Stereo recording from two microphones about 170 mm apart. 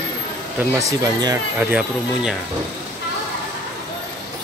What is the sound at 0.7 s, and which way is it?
Speech, 20° right (ahead or behind).